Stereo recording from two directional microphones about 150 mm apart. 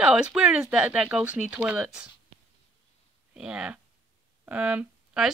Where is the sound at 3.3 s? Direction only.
5° right (ahead or behind).